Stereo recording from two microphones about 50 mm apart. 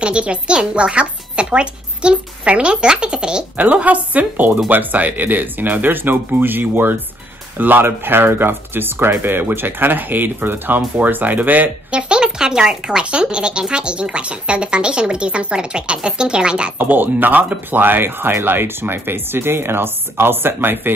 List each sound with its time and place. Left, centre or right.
0.0 s a woman's voice: right
3.5 s speech: right
11.9 s speech: right
16.7 s speech: right